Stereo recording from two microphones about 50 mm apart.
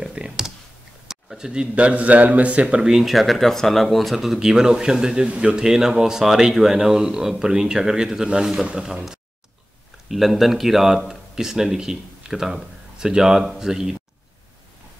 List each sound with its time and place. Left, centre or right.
0.1 s computer keyboard: centre
1.0 s a sound: centre
1.5 s speech: right
2.8 s speech: centre